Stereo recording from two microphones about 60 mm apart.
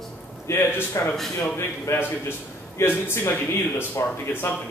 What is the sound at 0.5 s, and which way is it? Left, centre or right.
Speech, left.